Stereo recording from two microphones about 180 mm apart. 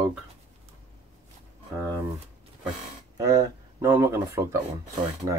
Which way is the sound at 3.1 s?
20° right (ahead or behind).